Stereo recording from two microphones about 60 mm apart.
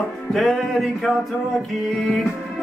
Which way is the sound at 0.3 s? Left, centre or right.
Centre.